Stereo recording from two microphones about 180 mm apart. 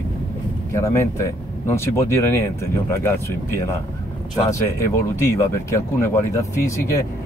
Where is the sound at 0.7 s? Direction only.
15° left (ahead or behind).